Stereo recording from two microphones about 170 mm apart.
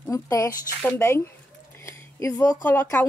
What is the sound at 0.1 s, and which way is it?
A woman's voice, 20° left (ahead or behind).